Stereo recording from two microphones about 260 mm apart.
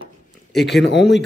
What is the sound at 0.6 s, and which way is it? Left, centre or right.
Speech, left.